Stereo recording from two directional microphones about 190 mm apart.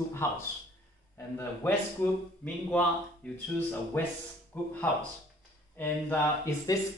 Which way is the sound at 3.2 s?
5° left (ahead or behind).